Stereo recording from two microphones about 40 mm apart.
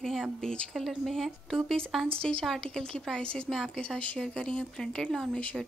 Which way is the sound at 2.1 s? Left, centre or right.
Left.